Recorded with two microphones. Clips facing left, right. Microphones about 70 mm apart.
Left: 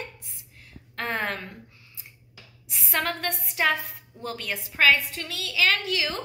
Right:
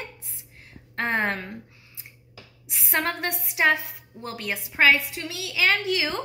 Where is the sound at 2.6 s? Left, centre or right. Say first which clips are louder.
Right 2 dB; right.